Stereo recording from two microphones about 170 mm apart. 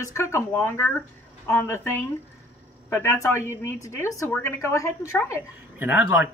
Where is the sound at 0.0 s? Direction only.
15° left (ahead or behind).